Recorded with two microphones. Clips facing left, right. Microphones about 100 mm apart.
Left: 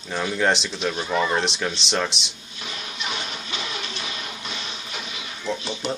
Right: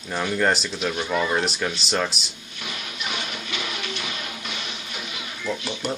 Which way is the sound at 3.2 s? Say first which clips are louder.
Right 1 dB; 30° left (ahead or behind).